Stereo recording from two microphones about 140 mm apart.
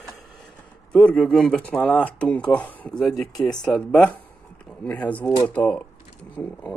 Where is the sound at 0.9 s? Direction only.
5° left (ahead or behind).